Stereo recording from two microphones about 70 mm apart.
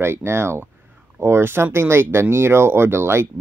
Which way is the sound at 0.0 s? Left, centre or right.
Right.